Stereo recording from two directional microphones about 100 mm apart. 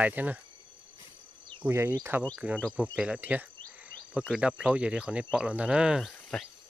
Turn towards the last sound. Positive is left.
turn(degrees=5)  # may be behind; listen again after turning